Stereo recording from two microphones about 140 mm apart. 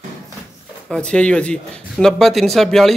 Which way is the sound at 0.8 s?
5° left (ahead or behind).